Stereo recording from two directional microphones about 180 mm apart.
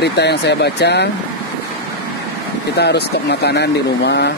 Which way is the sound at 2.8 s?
65° left (ahead or behind).